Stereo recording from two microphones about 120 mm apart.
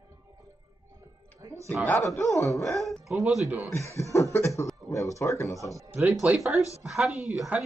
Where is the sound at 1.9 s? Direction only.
20° left (ahead or behind).